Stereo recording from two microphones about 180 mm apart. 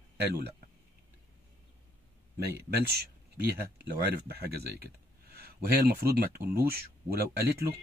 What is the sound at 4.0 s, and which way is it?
Speech, 60° right (ahead or behind).